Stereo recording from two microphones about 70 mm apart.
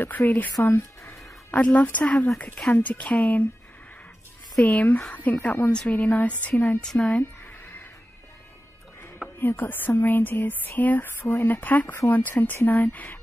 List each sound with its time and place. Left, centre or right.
0.2 s speech: left
0.6 s speech: left
1.5 s speech: centre
4.6 s speech: left
6.8 s a sound: centre
9.4 s speech: left